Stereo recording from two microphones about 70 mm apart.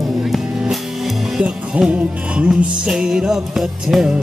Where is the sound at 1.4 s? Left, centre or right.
Centre.